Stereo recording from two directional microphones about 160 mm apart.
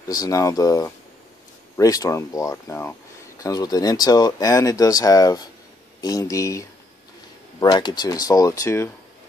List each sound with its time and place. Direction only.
0.1 s speech: 20° left (ahead or behind)
7.6 s speech: 25° left (ahead or behind)